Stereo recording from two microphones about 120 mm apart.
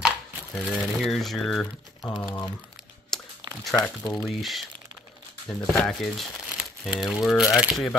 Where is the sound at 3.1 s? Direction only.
5° left (ahead or behind).